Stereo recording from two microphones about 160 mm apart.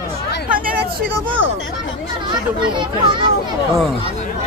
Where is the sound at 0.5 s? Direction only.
60° right (ahead or behind).